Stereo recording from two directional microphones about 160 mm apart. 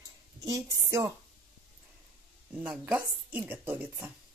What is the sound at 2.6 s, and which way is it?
Speech, 5° right (ahead or behind).